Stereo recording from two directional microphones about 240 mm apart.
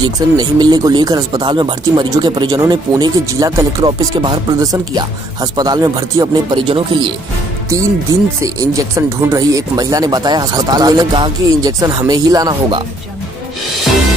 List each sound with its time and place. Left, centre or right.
0.0 s speech: centre